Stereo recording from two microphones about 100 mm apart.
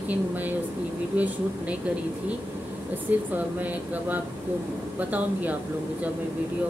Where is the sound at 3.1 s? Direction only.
15° right (ahead or behind).